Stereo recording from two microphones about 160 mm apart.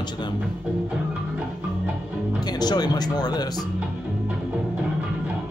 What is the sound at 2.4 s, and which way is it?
Speech, 25° left (ahead or behind).